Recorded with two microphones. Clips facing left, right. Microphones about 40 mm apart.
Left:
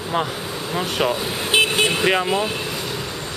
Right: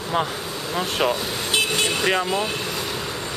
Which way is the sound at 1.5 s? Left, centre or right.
Left.